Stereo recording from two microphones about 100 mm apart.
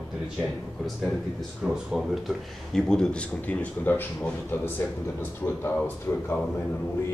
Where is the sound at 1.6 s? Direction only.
5° right (ahead or behind); by 6.4 s 20° left (ahead or behind).